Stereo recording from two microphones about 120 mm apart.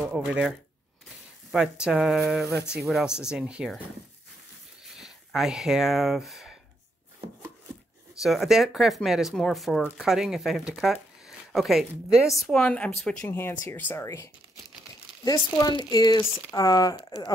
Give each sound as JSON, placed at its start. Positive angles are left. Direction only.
{"t": 0.0, "sound": "speech", "side_deg": -10}
{"t": 4.9, "sound": "speech", "side_deg": -5}
{"t": 8.2, "sound": "speech", "side_deg": 0}
{"t": 13.3, "sound": "speech", "side_deg": 20}
{"t": 15.5, "sound": "speech", "side_deg": 35}